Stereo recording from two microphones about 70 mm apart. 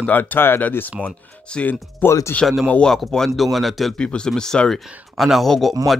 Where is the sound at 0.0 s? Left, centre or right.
Left.